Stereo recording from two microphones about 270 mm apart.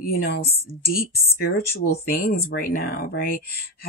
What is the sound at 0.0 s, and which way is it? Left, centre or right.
Speech, left.